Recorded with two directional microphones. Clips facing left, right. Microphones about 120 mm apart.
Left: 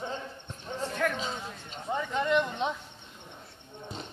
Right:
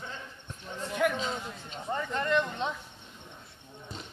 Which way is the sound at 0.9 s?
10° right (ahead or behind).